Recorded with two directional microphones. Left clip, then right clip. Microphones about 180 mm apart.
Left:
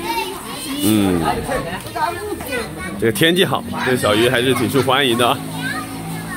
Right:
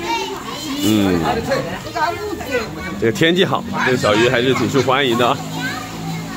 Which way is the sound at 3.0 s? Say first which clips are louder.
Even; centre (ahead or behind).